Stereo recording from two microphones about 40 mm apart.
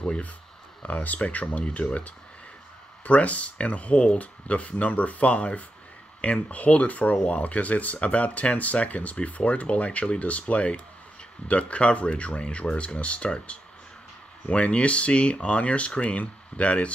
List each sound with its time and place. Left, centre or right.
0.8 s speech: left